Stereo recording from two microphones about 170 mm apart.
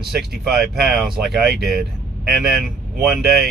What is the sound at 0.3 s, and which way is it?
Speech, 65° right (ahead or behind).